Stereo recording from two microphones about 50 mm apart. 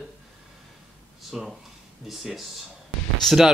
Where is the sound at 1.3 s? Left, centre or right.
Centre.